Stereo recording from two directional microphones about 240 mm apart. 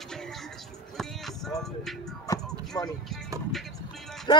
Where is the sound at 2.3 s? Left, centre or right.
Centre.